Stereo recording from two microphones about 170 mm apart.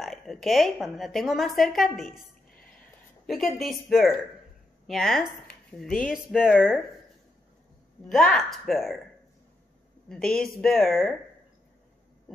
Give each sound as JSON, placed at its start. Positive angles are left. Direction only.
{"t": 0.0, "sound": "a woman's voice", "side_deg": 0}
{"t": 3.3, "sound": "a woman's voice", "side_deg": 0}
{"t": 8.1, "sound": "a woman's voice", "side_deg": 5}
{"t": 10.0, "sound": "a woman's voice", "side_deg": 5}